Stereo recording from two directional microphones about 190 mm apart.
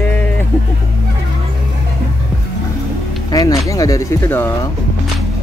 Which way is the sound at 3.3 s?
20° left (ahead or behind).